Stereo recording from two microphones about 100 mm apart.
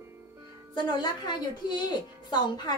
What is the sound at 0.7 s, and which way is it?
A woman's voice, 50° left (ahead or behind).